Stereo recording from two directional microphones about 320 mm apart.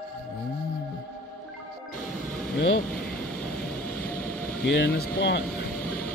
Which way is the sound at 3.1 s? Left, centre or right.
Centre.